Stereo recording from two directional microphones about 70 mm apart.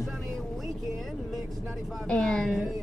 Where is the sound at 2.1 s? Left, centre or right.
Centre.